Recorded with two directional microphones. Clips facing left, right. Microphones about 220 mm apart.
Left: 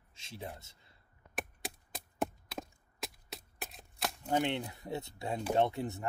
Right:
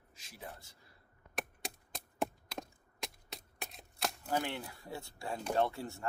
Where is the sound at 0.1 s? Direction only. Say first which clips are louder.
Left 5 dB; 25° left (ahead or behind).